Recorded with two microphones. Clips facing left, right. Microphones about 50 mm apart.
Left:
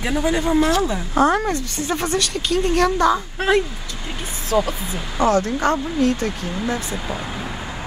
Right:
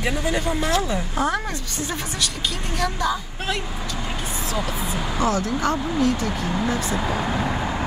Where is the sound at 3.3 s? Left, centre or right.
Left.